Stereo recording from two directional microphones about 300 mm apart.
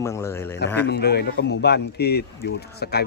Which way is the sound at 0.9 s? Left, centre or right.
Left.